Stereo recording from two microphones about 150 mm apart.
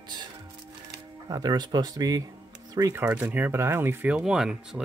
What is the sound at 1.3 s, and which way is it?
Speech, 30° right (ahead or behind).